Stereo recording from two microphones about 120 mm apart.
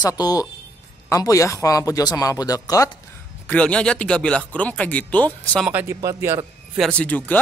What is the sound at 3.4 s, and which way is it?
Speech, 10° left (ahead or behind).